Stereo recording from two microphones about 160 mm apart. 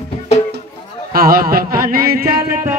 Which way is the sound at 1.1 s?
70° right (ahead or behind).